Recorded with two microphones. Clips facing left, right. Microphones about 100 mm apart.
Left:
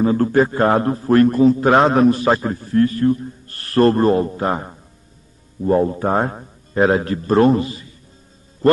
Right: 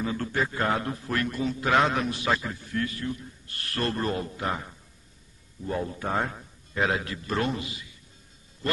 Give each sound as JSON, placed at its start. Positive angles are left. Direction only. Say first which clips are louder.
{"t": 0.0, "sound": "a man's voice", "louder": "left 13 dB", "side_deg": 40}